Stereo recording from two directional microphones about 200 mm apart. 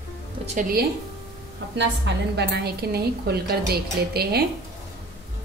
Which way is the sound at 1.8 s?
60° right (ahead or behind).